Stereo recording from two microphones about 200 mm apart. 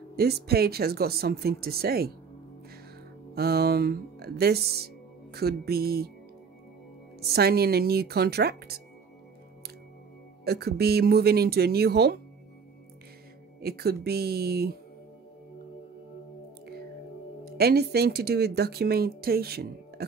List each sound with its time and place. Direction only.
0.1 s speech: 50° right (ahead or behind)
3.3 s speech: 50° right (ahead or behind)
7.2 s speech: 50° right (ahead or behind)
10.4 s speech: 55° right (ahead or behind)
13.6 s speech: 50° right (ahead or behind)
17.6 s speech: 50° right (ahead or behind)